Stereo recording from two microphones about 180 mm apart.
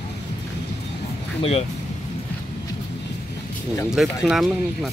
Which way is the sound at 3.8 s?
Centre (ahead or behind).